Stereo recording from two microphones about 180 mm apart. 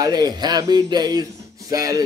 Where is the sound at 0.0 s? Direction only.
20° right (ahead or behind).